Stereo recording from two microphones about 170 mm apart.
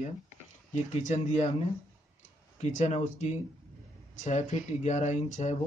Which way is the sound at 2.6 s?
40° left (ahead or behind).